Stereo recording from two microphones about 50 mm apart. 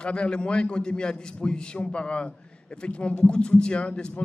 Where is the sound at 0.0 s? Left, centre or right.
Left.